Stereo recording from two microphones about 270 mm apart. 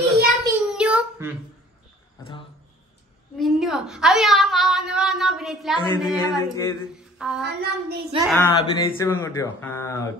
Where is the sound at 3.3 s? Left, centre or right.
Centre.